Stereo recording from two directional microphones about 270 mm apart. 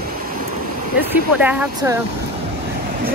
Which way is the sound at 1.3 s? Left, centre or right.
Centre.